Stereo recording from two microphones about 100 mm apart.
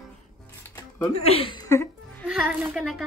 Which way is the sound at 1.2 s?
80° left.